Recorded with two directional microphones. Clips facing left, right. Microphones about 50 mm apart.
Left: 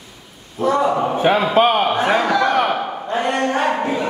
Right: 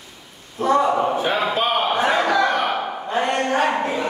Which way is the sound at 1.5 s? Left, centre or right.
Left.